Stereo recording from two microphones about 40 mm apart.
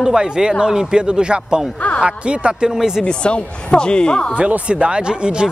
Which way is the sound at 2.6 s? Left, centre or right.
Centre.